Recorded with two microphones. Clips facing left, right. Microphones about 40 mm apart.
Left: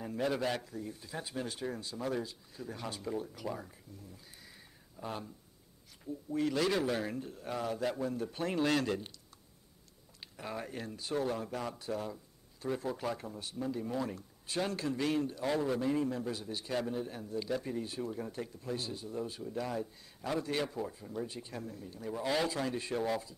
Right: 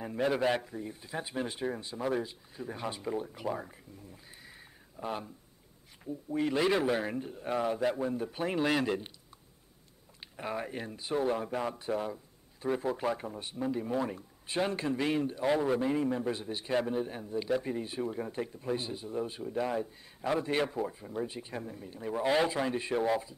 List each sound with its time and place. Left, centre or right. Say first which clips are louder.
0.0 s speech: right 4 dB; right
4.9 s speech: right 4 dB; centre
6.3 s speech: right 3 dB; right
10.2 s speech: right 5 dB; right